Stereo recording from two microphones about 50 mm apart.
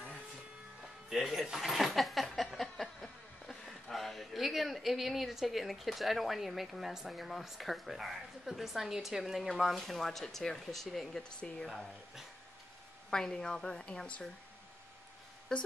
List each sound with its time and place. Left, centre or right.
1.1 s speech: centre
11.2 s a woman's voice: centre
13.1 s a woman's voice: centre